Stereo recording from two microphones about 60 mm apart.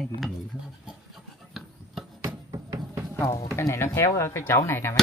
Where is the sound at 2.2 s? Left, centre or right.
Right.